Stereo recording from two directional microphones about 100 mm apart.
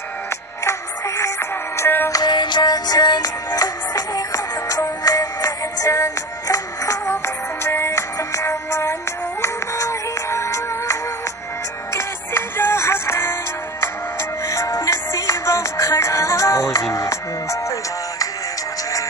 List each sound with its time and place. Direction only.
0.7 s music: 30° left (ahead or behind)
2.0 s music: 40° left (ahead or behind)